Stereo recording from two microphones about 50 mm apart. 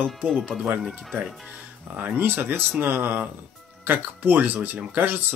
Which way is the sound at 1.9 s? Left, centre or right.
Right.